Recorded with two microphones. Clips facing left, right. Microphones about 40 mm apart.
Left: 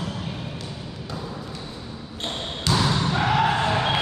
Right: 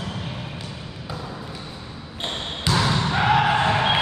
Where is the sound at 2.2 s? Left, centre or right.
Centre.